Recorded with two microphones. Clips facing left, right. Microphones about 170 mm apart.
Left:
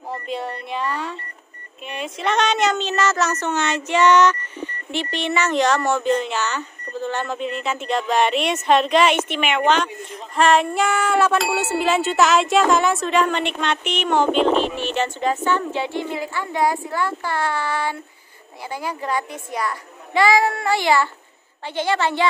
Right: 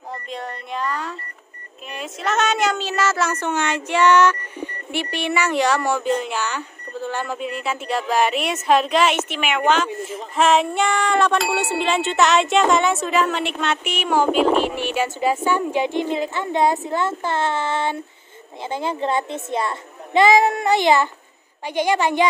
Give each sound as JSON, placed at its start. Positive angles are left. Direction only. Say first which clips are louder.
{"t": 0.3, "sound": "a woman's voice", "louder": "left 3 dB", "side_deg": 5}